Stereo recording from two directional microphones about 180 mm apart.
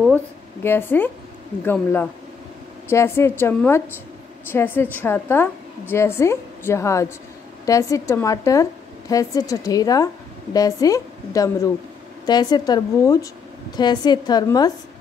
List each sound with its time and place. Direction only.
0.1 s a woman's voice: 10° left (ahead or behind)